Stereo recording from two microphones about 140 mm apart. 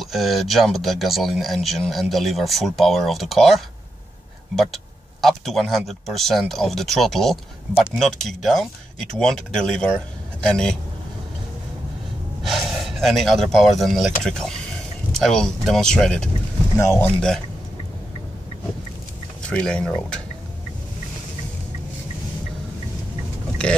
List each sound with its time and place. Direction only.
0.0 s speech: centre (ahead or behind)
5.2 s speech: centre (ahead or behind)
12.4 s speech: centre (ahead or behind)
16.7 s speech: 15° left (ahead or behind)
19.4 s speech: 5° left (ahead or behind)